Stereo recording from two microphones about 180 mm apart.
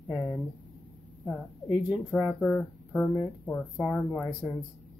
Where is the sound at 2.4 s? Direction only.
10° left (ahead or behind).